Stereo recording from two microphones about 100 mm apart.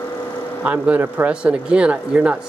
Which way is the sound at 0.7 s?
15° right (ahead or behind).